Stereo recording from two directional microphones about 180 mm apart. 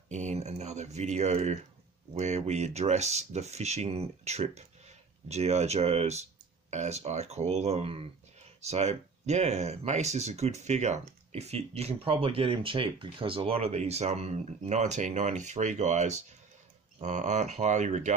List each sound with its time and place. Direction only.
0.1 s speech: 40° right (ahead or behind)